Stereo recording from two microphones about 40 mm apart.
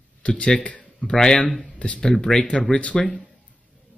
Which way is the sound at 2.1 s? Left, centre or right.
Centre.